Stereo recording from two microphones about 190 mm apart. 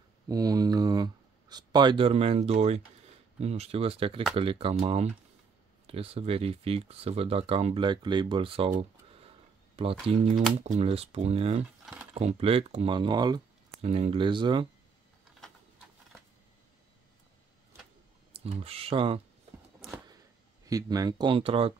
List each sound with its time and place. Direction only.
0.3 s speech: 20° right (ahead or behind)
10.0 s speech: 30° right (ahead or behind)
11.8 s mechanisms: 5° right (ahead or behind)
12.1 s speech: 35° right (ahead or behind)
13.7 s speech: 35° right (ahead or behind)
18.3 s speech: 30° right (ahead or behind)
20.6 s speech: 20° right (ahead or behind)